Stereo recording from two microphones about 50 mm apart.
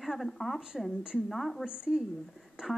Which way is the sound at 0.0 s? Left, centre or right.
Centre.